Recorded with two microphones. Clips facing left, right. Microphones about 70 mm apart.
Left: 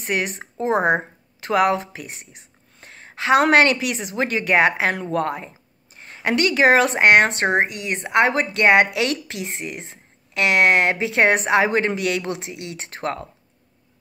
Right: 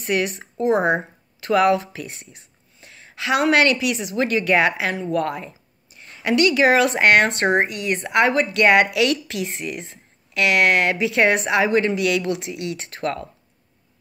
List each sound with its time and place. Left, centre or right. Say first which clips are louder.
0.0 s speech: right 2 dB; left
2.8 s a woman's voice: left 2 dB; left